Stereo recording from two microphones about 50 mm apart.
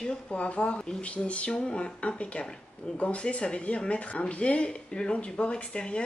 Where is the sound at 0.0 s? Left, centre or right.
Left.